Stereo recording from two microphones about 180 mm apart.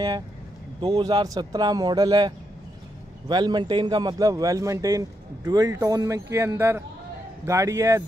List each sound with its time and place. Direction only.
0.7 s a man's voice: 25° right (ahead or behind)